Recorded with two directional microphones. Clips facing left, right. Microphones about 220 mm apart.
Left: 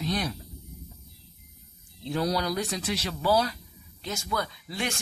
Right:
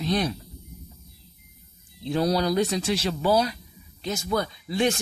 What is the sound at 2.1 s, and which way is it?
Speech, 30° right (ahead or behind).